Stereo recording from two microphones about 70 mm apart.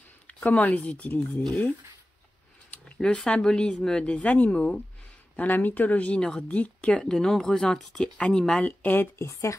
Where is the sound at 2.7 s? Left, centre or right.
Centre.